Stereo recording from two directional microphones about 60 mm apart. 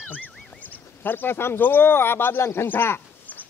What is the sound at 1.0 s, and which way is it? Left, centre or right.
Speech, left.